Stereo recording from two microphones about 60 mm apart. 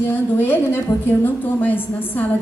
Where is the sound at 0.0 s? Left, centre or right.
Left.